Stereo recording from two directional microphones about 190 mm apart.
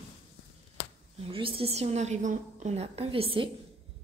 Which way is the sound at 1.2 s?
30° right (ahead or behind).